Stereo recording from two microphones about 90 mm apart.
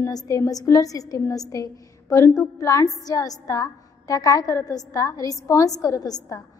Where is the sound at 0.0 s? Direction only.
35° left (ahead or behind).